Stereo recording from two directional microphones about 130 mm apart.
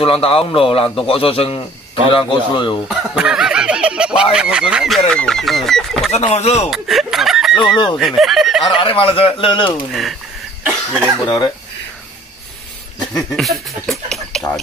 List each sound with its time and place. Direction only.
0.0 s a man's voice: 45° left (ahead or behind)
2.9 s speech: 5° right (ahead or behind)
6.3 s speech: 55° left (ahead or behind)
6.7 s speech: centre (ahead or behind)
8.7 s speech: 45° left (ahead or behind)
10.7 s cough: 5° left (ahead or behind)
11.2 s speech: 30° left (ahead or behind)
13.4 s speech: centre (ahead or behind)